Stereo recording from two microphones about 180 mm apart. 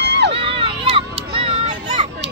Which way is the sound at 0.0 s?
70° right (ahead or behind).